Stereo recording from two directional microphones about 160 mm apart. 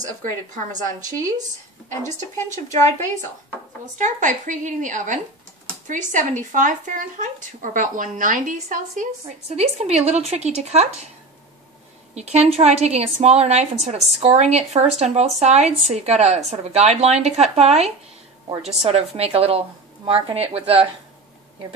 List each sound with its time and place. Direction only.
0.2 s a woman's voice: 55° right (ahead or behind)
4.0 s a woman's voice: 50° right (ahead or behind)
9.6 s a woman's voice: 40° right (ahead or behind)
12.2 s a woman's voice: 45° right (ahead or behind)